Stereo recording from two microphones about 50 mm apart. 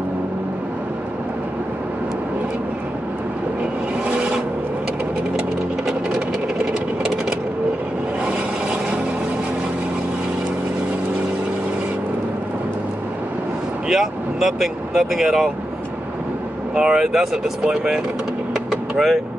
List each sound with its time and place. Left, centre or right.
4.1 s vehicle: right
5.9 s sewing machine: centre
8.3 s vehicle: centre
13.8 s vehicle: centre
16.7 s speech: centre
18.7 s vehicle: centre